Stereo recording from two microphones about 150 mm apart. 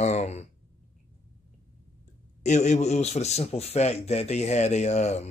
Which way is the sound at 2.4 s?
50° left (ahead or behind).